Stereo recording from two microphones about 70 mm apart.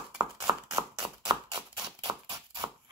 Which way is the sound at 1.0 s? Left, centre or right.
Right.